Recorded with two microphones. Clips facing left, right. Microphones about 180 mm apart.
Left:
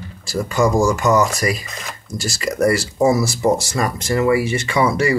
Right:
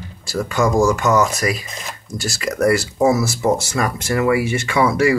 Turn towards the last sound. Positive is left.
turn(degrees=-5)  # may be behind; listen again after turning